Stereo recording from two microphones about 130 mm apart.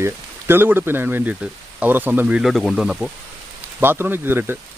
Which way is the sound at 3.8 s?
15° right (ahead or behind).